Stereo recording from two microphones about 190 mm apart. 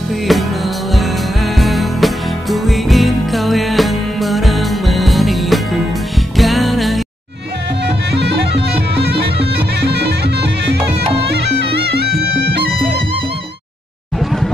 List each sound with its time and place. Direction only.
0.3 s music: centre (ahead or behind)
1.6 s music: centre (ahead or behind)
7.8 s music: 60° right (ahead or behind)